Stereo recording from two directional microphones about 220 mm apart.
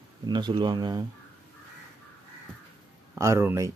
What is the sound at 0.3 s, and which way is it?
Speech, 20° right (ahead or behind).